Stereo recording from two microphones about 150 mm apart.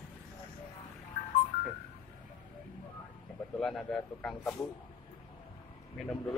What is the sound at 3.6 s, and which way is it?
Speech, centre (ahead or behind).